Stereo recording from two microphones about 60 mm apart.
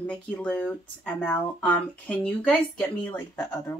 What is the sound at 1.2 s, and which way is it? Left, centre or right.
Speech, left.